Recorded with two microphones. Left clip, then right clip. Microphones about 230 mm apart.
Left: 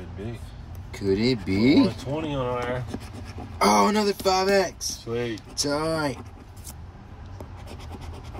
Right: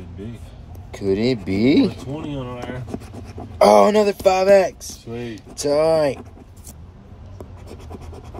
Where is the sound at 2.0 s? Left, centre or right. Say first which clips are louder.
Left 2 dB; left.